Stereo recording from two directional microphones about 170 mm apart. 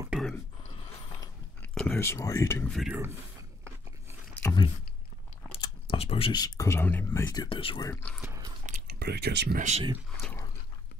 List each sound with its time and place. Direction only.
0.1 s a sound: centre (ahead or behind)
1.6 s speech: 10° left (ahead or behind)
2.7 s speech: centre (ahead or behind)
4.4 s speech: 15° left (ahead or behind)
5.5 s speech: 35° left (ahead or behind); by 7.2 s 10° left (ahead or behind)
7.2 s speech: 25° left (ahead or behind)
7.9 s speech: 10° left (ahead or behind)
8.2 s speech: 15° right (ahead or behind)
8.8 s speech: 75° right (ahead or behind)
9.6 s speech: 45° right (ahead or behind)